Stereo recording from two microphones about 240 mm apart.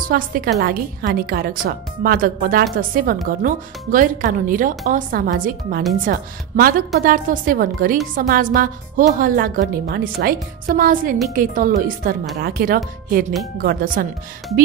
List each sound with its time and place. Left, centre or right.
0.1 s a woman's voice: right